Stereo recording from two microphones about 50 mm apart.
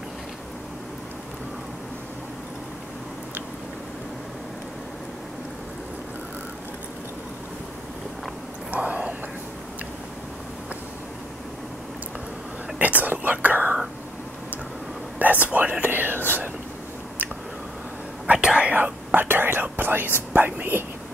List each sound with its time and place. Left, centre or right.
8.7 s whispering: right
12.7 s whispering: right
15.1 s whispering: right
18.2 s whispering: right
18.8 s whispering: right